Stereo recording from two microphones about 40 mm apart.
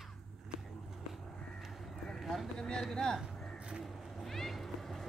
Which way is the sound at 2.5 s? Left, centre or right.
Centre.